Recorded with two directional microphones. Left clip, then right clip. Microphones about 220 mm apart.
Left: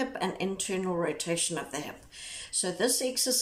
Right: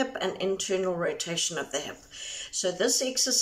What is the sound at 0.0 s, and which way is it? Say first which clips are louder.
Speech: right 3 dB; 20° left (ahead or behind).